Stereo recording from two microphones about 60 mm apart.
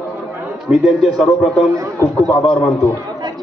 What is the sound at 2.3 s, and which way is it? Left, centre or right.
Speech, centre.